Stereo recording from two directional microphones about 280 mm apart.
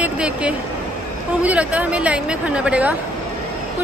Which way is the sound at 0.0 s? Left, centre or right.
Centre.